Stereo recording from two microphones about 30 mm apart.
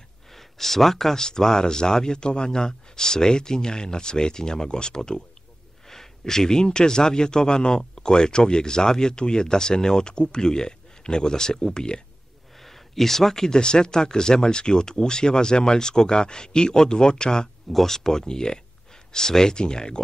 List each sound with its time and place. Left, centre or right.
0.3 s a sound: centre
1.1 s a man's voice: left
5.9 s a man's voice: centre
12.5 s a sound: centre
13.6 s a man's voice: left
17.7 s a man's voice: centre